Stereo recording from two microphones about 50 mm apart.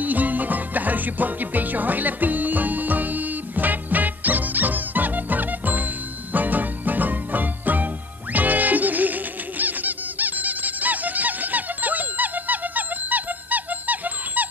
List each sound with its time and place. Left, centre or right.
0.0 s music: right